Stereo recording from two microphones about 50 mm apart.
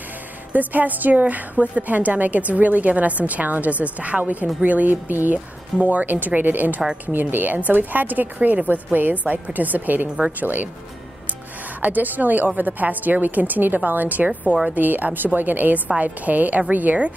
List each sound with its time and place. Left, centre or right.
0.5 s a woman's voice: right
11.8 s a woman's voice: right